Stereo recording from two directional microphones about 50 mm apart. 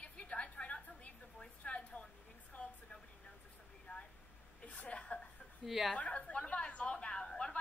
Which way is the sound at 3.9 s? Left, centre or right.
Left.